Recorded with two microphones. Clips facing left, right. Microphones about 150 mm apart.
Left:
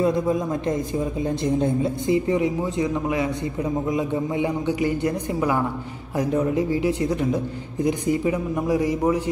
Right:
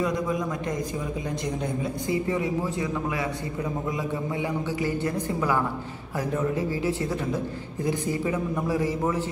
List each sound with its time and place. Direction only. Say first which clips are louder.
0.0 s a man's voice: left 5 dB; 30° left (ahead or behind)